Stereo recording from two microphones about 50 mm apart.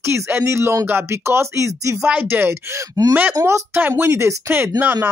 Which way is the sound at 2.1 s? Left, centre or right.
Right.